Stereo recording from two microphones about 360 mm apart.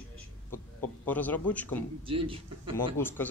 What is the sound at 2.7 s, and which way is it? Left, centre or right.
Speech, centre.